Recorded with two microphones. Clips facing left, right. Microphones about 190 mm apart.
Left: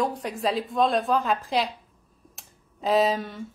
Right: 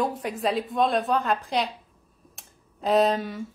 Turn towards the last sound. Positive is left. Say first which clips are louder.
# right 1 dB
turn(degrees=0)  # may be behind; listen again after turning